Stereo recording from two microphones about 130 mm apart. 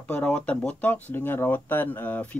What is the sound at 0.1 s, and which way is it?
Speech, 10° left (ahead or behind).